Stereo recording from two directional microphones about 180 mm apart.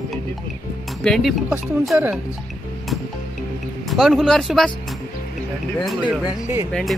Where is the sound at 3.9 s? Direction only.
Centre (ahead or behind).